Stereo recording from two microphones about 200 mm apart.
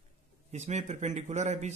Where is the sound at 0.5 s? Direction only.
35° right (ahead or behind).